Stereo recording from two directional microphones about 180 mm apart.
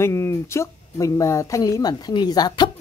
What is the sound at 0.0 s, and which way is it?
Speech, 15° left (ahead or behind).